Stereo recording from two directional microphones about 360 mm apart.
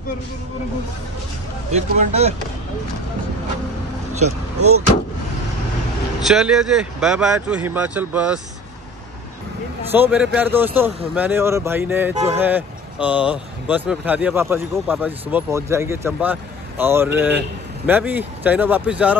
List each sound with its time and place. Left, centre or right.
1.7 s speech: centre
4.2 s speech: right
6.2 s speech: centre
9.8 s speech: centre